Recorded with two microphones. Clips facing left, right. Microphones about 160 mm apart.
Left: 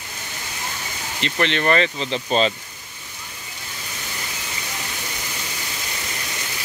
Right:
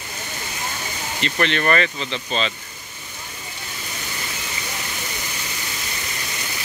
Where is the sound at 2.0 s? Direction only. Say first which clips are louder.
Left 5 dB; 40° left (ahead or behind).